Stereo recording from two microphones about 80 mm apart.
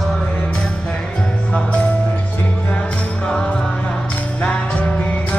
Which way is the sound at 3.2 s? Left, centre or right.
Centre.